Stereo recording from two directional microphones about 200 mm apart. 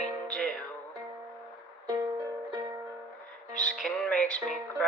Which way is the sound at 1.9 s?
20° right (ahead or behind).